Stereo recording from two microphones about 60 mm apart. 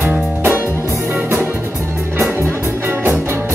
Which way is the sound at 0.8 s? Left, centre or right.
Right.